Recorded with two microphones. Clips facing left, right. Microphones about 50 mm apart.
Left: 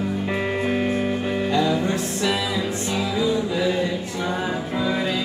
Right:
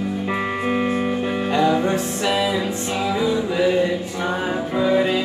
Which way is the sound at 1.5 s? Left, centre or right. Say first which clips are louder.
Right 4 dB; right.